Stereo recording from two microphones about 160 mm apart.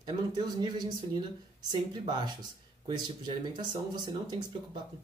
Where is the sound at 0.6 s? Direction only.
30° right (ahead or behind).